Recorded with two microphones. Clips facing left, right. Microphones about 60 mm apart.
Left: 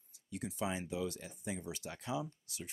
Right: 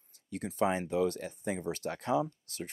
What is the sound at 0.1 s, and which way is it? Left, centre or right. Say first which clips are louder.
Speech: right 4 dB; right.